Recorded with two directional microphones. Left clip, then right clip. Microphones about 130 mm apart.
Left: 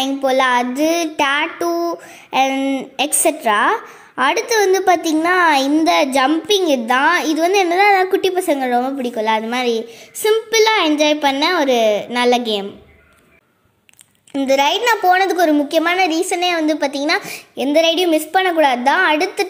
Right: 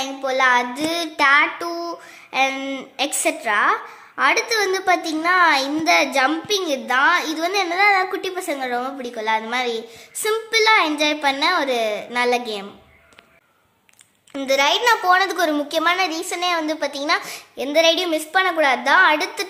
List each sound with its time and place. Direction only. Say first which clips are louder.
0.0 s a woman's voice: left 4 dB; 35° left (ahead or behind)
2.6 s a woman's voice: left 8 dB; 10° left (ahead or behind)
3.0 s a woman's voice: left 4 dB; 25° left (ahead or behind)
14.4 s a woman's voice: left 3 dB; 25° left (ahead or behind)